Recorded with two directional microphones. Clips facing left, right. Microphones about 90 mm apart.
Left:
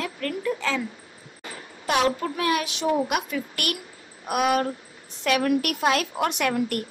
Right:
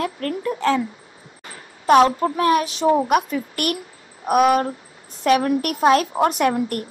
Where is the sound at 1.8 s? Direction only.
40° right (ahead or behind).